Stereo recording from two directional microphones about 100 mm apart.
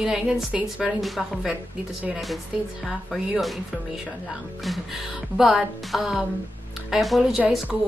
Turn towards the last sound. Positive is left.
turn(degrees=-5)  # may be behind; listen again after turning